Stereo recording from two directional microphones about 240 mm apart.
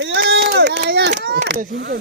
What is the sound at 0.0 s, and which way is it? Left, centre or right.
Run, right.